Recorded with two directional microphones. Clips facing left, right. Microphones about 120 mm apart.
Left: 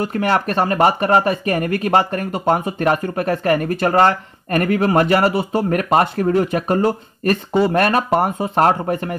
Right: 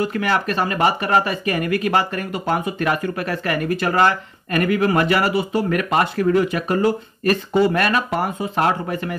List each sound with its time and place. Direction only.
0.0 s speech: 40° left (ahead or behind)